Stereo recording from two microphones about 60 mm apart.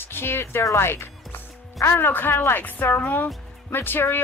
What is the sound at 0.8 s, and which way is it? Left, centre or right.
Music, left.